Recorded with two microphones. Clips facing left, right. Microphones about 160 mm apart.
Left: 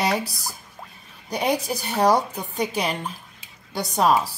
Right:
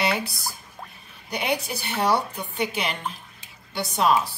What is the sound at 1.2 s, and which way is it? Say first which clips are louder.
Speech: left 4 dB; 35° left (ahead or behind).